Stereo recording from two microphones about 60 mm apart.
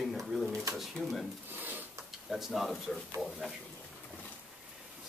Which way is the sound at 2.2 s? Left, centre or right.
Centre.